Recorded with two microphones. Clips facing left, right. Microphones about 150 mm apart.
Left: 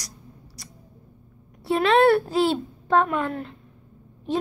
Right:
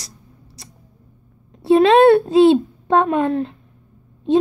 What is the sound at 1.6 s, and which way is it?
A woman's voice, 25° right (ahead or behind).